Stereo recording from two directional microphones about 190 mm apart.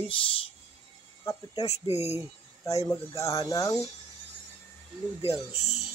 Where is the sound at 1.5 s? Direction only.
35° left (ahead or behind).